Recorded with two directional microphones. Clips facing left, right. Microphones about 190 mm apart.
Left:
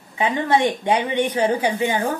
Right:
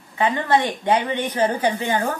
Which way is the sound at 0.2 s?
15° left (ahead or behind).